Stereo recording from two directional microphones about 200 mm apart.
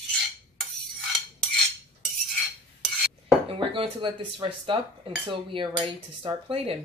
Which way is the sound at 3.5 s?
25° right (ahead or behind).